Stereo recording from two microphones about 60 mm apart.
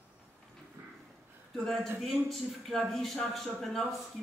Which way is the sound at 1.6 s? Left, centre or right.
Centre.